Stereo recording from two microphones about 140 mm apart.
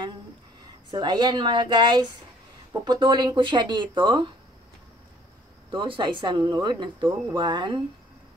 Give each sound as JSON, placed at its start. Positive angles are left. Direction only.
{"t": 0.8, "sound": "speech", "side_deg": -30}
{"t": 5.7, "sound": "speech", "side_deg": -35}